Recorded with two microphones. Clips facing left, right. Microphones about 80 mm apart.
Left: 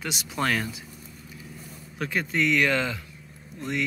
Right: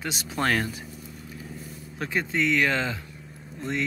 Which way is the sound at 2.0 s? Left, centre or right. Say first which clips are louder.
Even; right.